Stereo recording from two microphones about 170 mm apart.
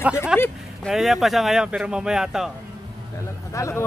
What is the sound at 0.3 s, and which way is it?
Speech, 5° right (ahead or behind).